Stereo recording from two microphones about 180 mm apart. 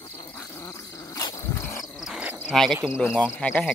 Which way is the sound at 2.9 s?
10° left (ahead or behind).